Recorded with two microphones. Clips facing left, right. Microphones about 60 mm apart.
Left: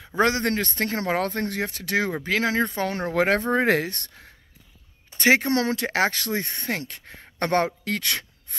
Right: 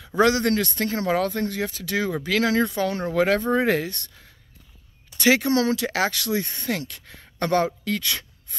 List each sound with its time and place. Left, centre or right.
0.0 s speech: left
2.1 s speech: left
2.6 s speech: left
5.1 s speech: left
7.3 s speech: left